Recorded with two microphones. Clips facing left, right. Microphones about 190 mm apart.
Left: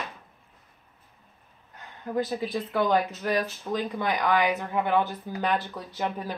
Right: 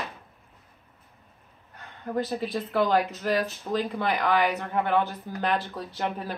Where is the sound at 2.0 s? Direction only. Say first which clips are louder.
Even; 5° left (ahead or behind); by 3.8 s 10° right (ahead or behind).